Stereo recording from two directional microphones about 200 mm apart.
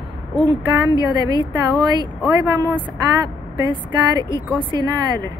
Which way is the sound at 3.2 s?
20° right (ahead or behind).